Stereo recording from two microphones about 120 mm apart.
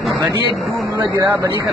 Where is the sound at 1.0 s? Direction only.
30° right (ahead or behind).